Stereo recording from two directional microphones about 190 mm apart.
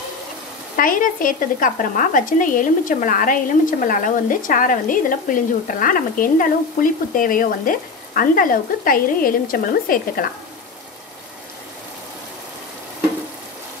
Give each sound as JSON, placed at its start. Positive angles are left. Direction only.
{"t": 0.7, "sound": "speech", "side_deg": 45}